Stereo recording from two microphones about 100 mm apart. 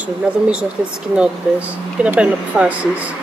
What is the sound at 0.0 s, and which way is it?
Speech, 10° right (ahead or behind).